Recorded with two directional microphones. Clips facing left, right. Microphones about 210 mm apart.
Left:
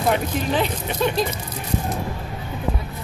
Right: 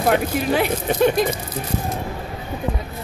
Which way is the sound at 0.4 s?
10° right (ahead or behind).